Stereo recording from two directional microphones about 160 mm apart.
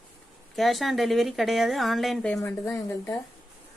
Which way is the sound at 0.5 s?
Centre (ahead or behind).